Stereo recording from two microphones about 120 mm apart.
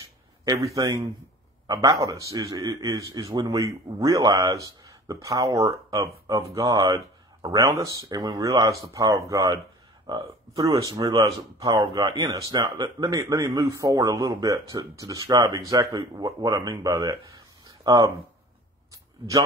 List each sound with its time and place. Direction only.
0.7 s a man's voice: 30° right (ahead or behind)
8.1 s a man's voice: 30° right (ahead or behind)
15.5 s a man's voice: 25° right (ahead or behind)
17.6 s a sound: 30° right (ahead or behind)